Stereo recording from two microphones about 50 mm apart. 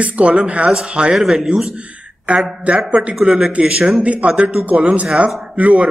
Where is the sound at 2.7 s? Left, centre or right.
Right.